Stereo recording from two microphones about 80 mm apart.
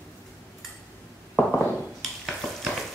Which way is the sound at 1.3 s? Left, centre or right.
Centre.